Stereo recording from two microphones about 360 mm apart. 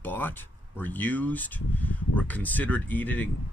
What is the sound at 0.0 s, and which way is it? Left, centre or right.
Speech, centre.